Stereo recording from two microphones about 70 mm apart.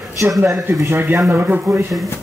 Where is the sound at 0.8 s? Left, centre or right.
Right.